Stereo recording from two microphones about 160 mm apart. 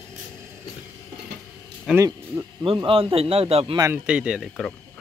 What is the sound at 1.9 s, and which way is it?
Speech, 20° right (ahead or behind).